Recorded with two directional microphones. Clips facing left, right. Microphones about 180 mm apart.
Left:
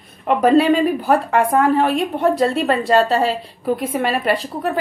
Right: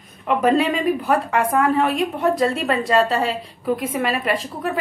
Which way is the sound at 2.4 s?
Centre (ahead or behind).